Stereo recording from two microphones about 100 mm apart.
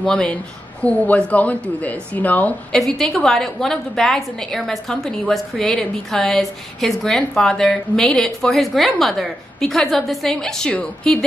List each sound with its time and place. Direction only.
0.0 s speech: 10° left (ahead or behind)
2.7 s speech: 5° left (ahead or behind)